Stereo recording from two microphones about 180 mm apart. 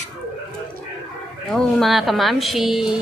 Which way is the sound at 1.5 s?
Centre (ahead or behind).